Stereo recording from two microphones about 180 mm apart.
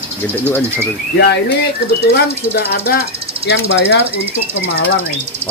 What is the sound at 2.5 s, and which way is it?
Speech, 60° left (ahead or behind).